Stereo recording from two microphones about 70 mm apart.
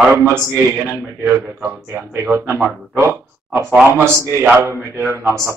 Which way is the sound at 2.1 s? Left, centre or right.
Right.